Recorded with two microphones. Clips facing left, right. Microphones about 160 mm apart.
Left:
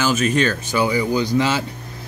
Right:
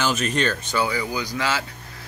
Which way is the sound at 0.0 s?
5° left (ahead or behind).